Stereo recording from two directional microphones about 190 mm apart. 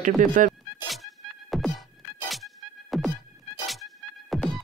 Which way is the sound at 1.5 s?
Centre (ahead or behind).